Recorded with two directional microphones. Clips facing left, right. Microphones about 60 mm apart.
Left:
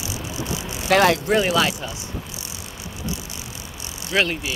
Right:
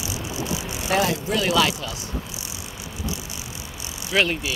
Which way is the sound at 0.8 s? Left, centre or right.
Left.